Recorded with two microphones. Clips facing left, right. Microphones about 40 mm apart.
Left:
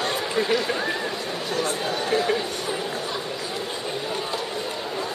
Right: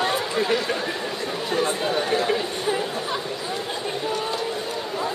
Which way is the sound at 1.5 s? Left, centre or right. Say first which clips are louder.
Right 3 dB; right.